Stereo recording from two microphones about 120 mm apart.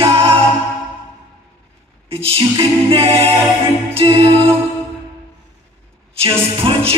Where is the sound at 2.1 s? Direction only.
50° right (ahead or behind).